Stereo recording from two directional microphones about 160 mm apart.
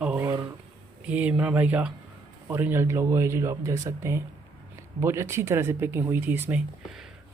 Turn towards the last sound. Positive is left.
turn(degrees=-10)  # may be behind; listen again after turning